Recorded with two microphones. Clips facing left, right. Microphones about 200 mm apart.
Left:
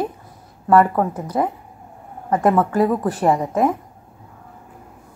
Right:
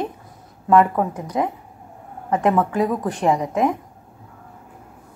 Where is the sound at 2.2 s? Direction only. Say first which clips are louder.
Left 2 dB; 15° right (ahead or behind).